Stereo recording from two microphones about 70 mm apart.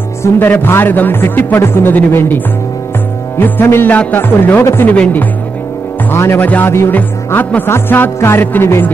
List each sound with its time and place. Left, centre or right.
0.4 s a man's voice: left
3.3 s music: left
3.9 s a man's voice: left
4.2 s music: left
4.8 s a man's voice: left
6.1 s music: left
6.4 s a man's voice: left
7.2 s music: left